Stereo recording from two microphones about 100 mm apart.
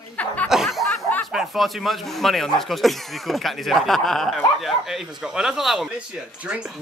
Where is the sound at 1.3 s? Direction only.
Centre (ahead or behind).